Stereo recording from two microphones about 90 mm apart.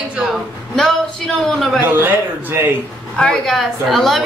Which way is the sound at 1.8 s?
25° right (ahead or behind).